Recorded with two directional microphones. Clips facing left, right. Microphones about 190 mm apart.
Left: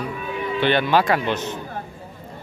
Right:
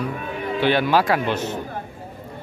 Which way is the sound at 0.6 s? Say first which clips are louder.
Even; 5° right (ahead or behind).